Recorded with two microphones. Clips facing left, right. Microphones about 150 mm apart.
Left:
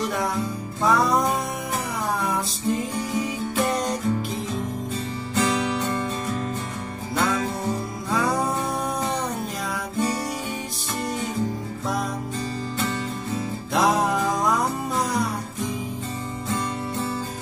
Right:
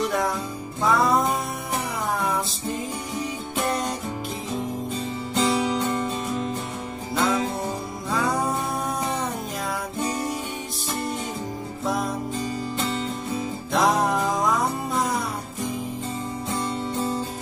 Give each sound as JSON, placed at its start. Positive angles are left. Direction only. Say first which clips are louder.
{"t": 0.0, "sound": "music", "louder": "right 1 dB", "side_deg": 0}
{"t": 2.2, "sound": "music", "louder": "left 2 dB", "side_deg": 0}
{"t": 5.3, "sound": "music", "louder": "right 1 dB", "side_deg": -20}
{"t": 7.2, "sound": "music", "louder": "right 1 dB", "side_deg": 0}
{"t": 13.7, "sound": "music", "louder": "even", "side_deg": 0}
{"t": 16.5, "sound": "music", "louder": "right 1 dB", "side_deg": -15}